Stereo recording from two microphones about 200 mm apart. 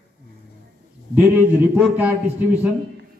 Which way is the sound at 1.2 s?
10° right (ahead or behind).